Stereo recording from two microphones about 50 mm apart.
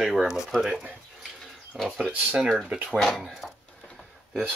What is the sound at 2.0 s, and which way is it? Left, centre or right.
Speech, right.